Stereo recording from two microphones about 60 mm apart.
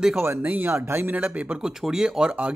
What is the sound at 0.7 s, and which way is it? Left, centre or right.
Speech, right.